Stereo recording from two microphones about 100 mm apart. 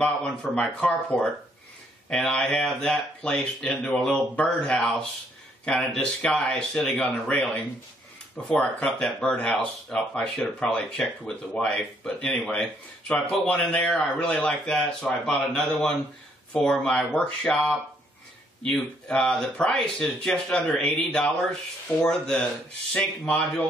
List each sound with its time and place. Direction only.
0.0 s speech: 10° left (ahead or behind)